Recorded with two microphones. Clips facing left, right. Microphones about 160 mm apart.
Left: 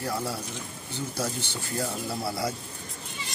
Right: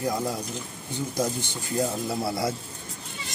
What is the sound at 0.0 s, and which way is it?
A man's voice, 15° right (ahead or behind).